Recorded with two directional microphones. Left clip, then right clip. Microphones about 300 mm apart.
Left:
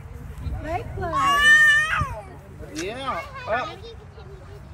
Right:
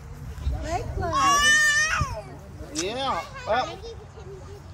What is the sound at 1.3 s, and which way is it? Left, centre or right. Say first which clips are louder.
Baby cry: left 6 dB; centre.